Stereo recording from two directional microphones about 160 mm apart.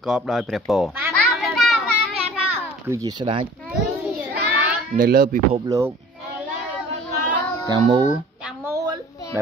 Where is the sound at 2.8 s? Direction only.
20° right (ahead or behind).